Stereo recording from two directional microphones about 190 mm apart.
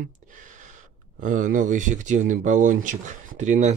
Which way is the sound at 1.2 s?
45° right (ahead or behind).